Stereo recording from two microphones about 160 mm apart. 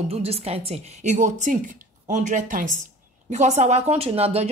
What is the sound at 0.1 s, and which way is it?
A woman's voice, 40° right (ahead or behind).